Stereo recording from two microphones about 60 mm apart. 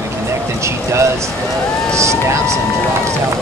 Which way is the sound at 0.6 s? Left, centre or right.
Right.